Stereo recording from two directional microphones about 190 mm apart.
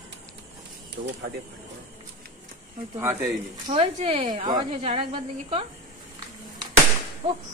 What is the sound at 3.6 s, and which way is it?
Speech, 30° right (ahead or behind).